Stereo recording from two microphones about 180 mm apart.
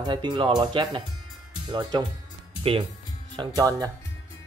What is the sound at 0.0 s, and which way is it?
A man's voice, 25° right (ahead or behind).